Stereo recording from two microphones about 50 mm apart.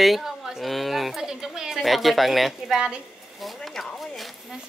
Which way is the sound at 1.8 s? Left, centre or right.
Centre.